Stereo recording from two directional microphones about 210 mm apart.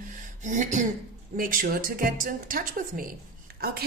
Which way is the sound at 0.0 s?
40° right (ahead or behind).